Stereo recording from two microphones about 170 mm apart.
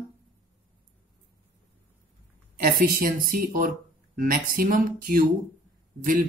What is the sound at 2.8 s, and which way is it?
Speech, 55° right (ahead or behind).